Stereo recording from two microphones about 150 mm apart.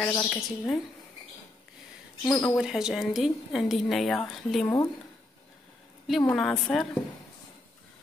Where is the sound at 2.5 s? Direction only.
5° right (ahead or behind).